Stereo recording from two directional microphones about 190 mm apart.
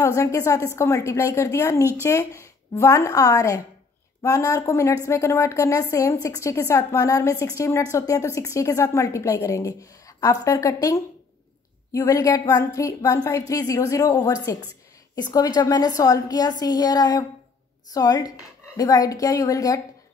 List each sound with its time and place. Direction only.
0.0 s a woman's voice: 15° left (ahead or behind)